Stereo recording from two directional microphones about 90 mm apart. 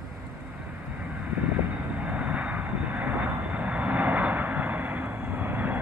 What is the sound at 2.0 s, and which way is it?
Vehicle, 15° right (ahead or behind).